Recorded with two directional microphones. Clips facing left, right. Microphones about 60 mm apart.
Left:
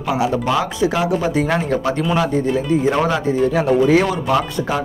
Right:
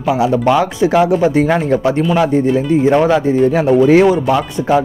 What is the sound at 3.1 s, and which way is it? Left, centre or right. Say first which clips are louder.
Speech: right 5 dB; right.